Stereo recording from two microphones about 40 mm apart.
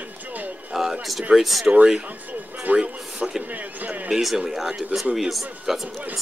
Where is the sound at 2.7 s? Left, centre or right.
Right.